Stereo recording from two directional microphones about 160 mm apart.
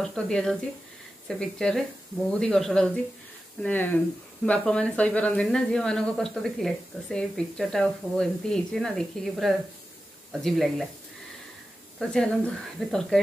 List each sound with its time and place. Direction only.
0.0 s speech: 5° left (ahead or behind)
12.0 s speech: 5° left (ahead or behind)